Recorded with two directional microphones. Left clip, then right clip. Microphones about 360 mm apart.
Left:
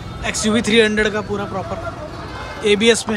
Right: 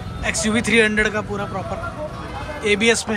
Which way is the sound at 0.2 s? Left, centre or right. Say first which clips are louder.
Left 2 dB; centre.